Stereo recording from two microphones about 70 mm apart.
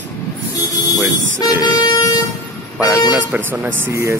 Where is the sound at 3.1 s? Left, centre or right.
Right.